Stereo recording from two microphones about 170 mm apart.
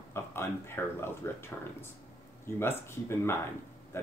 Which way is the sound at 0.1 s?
15° left (ahead or behind).